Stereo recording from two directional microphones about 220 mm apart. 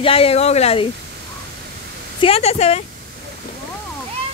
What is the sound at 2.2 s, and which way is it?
Speech, 25° left (ahead or behind).